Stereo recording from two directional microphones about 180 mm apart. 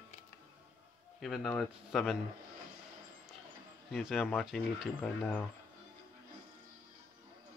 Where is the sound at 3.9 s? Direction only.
Centre (ahead or behind).